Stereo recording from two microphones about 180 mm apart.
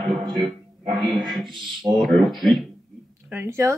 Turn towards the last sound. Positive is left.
turn(degrees=-15)  # may be behind; listen again after turning